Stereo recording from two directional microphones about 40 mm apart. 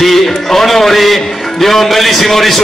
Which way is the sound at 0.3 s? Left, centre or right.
Centre.